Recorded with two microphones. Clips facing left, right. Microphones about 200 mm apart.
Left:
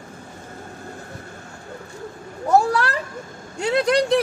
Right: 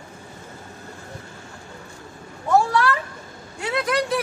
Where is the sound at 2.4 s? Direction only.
35° left (ahead or behind).